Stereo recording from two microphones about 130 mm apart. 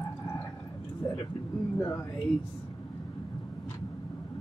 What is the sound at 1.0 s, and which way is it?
Vehicle, 35° left (ahead or behind).